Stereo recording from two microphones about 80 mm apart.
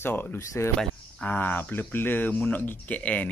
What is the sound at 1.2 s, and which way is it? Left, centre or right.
Speech, left.